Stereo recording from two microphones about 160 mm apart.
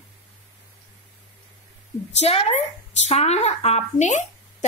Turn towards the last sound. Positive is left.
turn(degrees=45)  # may be behind; listen again after turning